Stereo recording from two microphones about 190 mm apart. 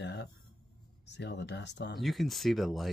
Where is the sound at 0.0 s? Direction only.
65° left (ahead or behind).